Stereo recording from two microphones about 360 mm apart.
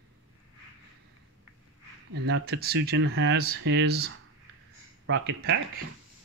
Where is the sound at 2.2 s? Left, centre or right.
Right.